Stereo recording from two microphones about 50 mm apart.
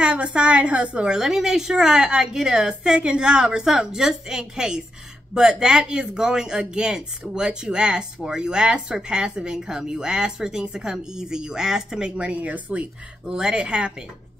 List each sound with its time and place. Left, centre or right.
0.0 s a woman's voice: right
1.0 s speech: centre; by 12.8 s right
13.3 s a woman's voice: centre